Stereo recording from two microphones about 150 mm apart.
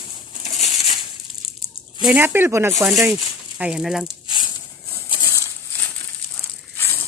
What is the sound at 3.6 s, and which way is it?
Speech, 5° right (ahead or behind).